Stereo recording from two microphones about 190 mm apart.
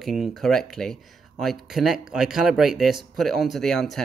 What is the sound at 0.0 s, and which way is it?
Speech, centre (ahead or behind).